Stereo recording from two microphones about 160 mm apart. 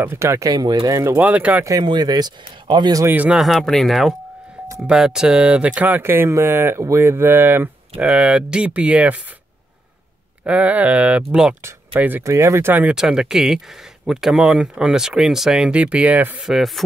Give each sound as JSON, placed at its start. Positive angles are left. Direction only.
{"t": 0.0, "sound": "speech", "side_deg": -15}
{"t": 1.7, "sound": "speech", "side_deg": -25}
{"t": 3.1, "sound": "speech", "side_deg": -10}
{"t": 10.4, "sound": "speech", "side_deg": -10}